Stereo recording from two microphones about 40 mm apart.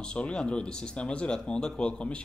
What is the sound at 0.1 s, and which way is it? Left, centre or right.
Speech, left.